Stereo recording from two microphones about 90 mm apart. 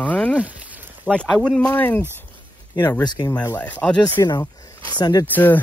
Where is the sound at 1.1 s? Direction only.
10° left (ahead or behind).